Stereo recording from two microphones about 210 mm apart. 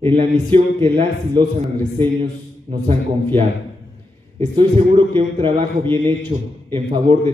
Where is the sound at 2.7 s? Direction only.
30° right (ahead or behind).